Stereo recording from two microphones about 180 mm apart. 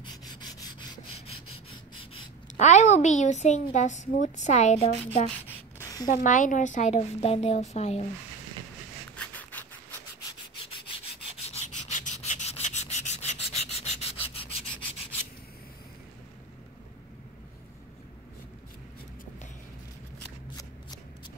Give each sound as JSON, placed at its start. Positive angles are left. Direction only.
{"t": 0.0, "sound": "rub", "side_deg": 25}
{"t": 2.5, "sound": "a woman's voice", "side_deg": 40}
{"t": 5.3, "sound": "a sound", "side_deg": 15}
{"t": 6.0, "sound": "a woman's voice", "side_deg": 45}
{"t": 9.1, "sound": "a sound", "side_deg": 10}
{"t": 11.4, "sound": "rub", "side_deg": 40}